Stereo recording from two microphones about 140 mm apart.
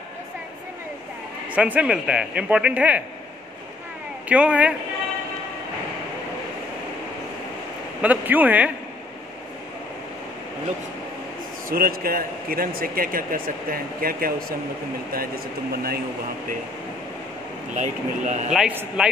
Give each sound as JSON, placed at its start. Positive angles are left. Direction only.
{"t": 1.5, "sound": "a man's voice", "side_deg": -10}
{"t": 4.3, "sound": "a man's voice", "side_deg": -10}
{"t": 8.0, "sound": "a man's voice", "side_deg": -10}
{"t": 11.7, "sound": "speech", "side_deg": -90}
{"t": 17.7, "sound": "a man's voice", "side_deg": -60}
{"t": 18.7, "sound": "a man's voice", "side_deg": -15}